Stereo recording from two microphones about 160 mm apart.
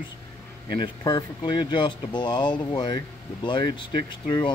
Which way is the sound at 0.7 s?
30° left (ahead or behind).